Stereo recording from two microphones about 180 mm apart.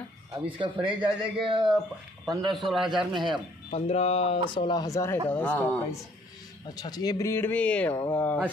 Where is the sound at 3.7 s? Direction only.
35° left (ahead or behind).